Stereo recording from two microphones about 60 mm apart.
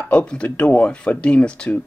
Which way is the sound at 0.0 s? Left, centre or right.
Centre.